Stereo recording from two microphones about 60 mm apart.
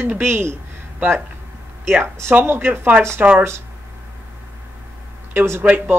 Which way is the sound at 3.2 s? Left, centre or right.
Right.